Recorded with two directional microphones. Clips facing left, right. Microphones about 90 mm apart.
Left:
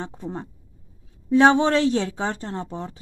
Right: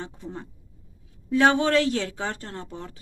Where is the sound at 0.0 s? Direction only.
35° left (ahead or behind).